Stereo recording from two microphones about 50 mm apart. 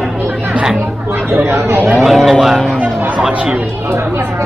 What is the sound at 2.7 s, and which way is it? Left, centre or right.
Music, right.